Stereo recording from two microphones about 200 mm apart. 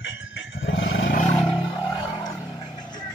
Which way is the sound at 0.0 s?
70° left (ahead or behind).